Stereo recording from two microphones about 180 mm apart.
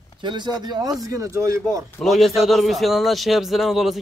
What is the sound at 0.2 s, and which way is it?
Speech, 25° right (ahead or behind).